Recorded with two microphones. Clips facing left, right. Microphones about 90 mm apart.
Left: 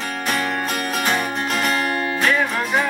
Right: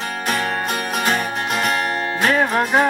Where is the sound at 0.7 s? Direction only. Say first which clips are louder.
Right 1 dB; centre (ahead or behind).